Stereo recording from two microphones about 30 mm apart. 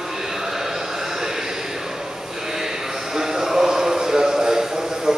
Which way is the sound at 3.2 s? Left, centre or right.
Centre.